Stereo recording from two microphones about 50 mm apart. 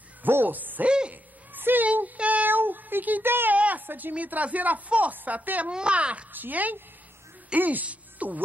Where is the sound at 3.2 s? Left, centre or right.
Right.